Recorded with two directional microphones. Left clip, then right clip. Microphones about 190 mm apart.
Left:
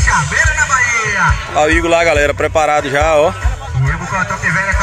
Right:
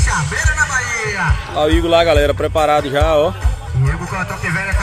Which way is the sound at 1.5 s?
5° right (ahead or behind).